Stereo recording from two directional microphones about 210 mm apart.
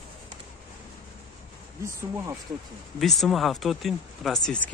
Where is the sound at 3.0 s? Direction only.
Centre (ahead or behind).